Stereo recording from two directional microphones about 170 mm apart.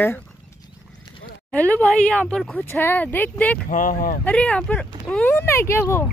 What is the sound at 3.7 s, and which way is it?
Speech, 50° left (ahead or behind).